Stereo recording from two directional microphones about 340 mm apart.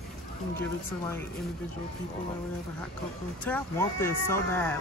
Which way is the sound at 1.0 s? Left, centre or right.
Centre.